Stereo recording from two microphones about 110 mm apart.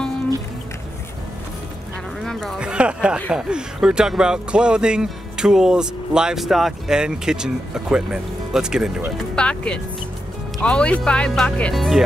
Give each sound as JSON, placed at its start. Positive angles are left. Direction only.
{"t": 2.1, "sound": "a sound", "side_deg": 0}
{"t": 2.6, "sound": "speech", "side_deg": -10}
{"t": 9.3, "sound": "speech", "side_deg": 10}
{"t": 11.7, "sound": "speech", "side_deg": 0}